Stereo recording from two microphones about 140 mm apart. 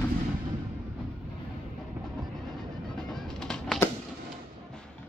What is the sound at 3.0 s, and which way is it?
Bird, 5° left (ahead or behind).